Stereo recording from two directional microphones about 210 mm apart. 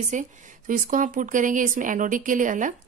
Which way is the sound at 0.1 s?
40° right (ahead or behind).